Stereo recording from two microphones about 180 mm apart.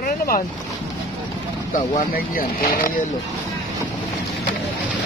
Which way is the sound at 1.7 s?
50° left (ahead or behind).